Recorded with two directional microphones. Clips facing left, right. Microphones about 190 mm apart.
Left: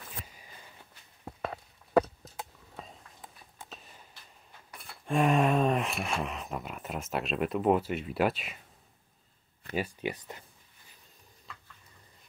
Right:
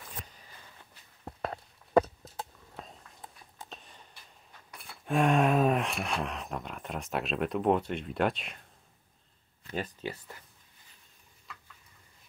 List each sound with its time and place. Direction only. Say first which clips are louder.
4.6 s speech: even; centre (ahead or behind)
9.8 s speech: left 3 dB; 15° left (ahead or behind)